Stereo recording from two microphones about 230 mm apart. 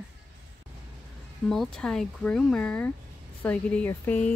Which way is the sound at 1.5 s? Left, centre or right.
Centre.